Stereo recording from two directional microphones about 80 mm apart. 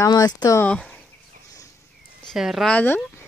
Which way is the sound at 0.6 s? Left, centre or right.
Centre.